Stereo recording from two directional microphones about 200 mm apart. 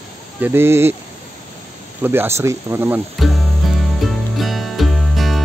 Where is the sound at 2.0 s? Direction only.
10° right (ahead or behind).